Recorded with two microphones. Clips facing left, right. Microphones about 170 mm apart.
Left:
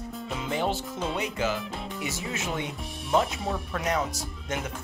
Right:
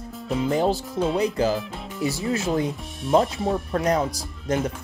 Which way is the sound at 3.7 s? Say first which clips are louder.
Right 5 dB; 35° right (ahead or behind).